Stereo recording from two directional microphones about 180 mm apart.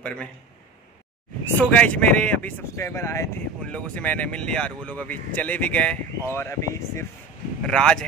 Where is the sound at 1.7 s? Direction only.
5° left (ahead or behind).